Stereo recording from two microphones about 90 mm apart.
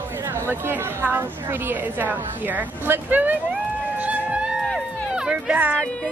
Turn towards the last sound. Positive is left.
turn(degrees=10)  # may be behind; listen again after turning